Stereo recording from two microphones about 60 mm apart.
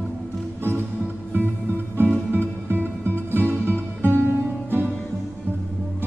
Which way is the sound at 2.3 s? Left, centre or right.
Right.